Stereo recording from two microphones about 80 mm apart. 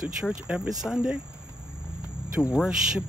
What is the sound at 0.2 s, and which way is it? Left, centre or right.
Speech, centre.